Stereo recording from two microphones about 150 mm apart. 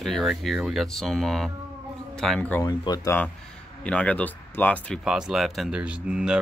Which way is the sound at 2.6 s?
25° left (ahead or behind).